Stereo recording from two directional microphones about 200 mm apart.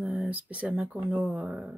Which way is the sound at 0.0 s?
5° right (ahead or behind).